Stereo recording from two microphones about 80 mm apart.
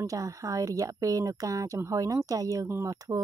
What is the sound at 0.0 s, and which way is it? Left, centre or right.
A woman's voice, right.